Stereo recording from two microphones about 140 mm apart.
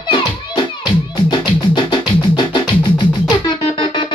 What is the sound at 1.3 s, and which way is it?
Music, 35° left (ahead or behind).